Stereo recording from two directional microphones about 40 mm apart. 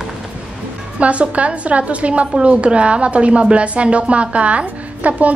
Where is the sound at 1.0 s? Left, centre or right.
Right.